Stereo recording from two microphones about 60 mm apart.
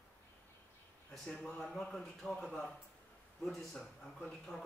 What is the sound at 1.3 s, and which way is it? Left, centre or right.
Speech, centre.